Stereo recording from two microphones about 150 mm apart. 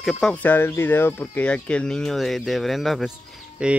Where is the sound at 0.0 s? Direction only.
5° left (ahead or behind).